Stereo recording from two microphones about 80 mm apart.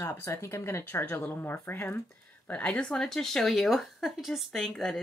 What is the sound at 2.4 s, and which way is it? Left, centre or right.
Speech, centre.